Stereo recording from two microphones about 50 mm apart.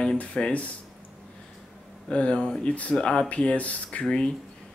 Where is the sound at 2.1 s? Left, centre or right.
Left.